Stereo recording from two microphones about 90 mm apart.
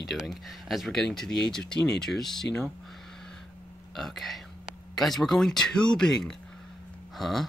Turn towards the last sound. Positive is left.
turn(degrees=0)  # may be behind; listen again after turning